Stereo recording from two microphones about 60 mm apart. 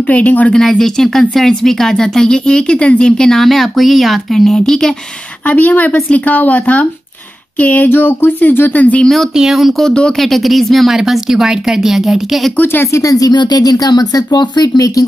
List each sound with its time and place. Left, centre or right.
0.1 s speech: left
0.5 s speech: centre
5.5 s speech: left
9.4 s speech: centre
9.8 s speech: centre
10.3 s speech: centre
12.9 s speech: left